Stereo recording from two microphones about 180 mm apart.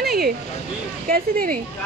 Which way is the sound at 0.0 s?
60° right (ahead or behind).